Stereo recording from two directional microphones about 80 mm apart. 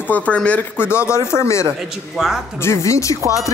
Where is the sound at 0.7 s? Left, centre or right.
Left.